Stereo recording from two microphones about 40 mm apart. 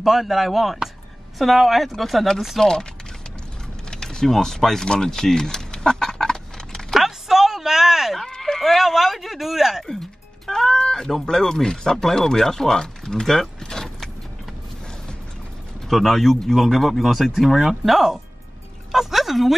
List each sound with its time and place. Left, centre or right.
0.0 s speech: centre
2.6 s speech: centre
3.9 s speech: centre
4.9 s a sound: centre
7.1 s a sound: centre
8.2 s speech: centre
10.4 s music: centre
11.2 s speech: centre
15.9 s speech: centre
18.9 s music: centre